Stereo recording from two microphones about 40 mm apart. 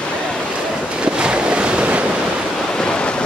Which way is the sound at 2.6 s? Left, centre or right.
Centre.